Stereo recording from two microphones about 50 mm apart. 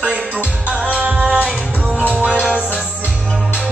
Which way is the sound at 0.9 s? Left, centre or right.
Right.